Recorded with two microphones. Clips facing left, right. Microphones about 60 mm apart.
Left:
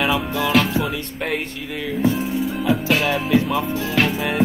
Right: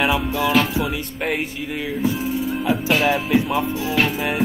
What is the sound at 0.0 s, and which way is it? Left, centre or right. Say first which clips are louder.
Music: right 1 dB; centre.